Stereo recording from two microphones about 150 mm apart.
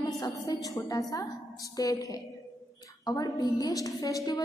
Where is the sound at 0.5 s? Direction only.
25° left (ahead or behind).